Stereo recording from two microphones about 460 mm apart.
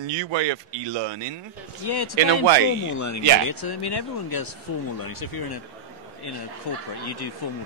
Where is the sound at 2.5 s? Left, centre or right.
Right.